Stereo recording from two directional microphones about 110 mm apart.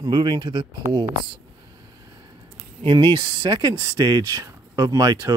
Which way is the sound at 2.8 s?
45° right (ahead or behind).